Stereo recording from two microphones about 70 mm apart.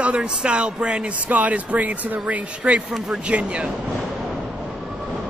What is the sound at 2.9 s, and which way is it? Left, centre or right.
Speech, centre.